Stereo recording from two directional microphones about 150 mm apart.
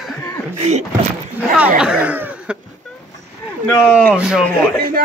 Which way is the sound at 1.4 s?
10° right (ahead or behind).